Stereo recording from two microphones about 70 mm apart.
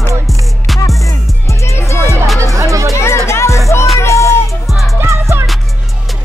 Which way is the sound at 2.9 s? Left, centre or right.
Left.